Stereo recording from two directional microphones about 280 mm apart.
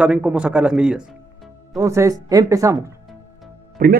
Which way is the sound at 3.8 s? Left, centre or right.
Right.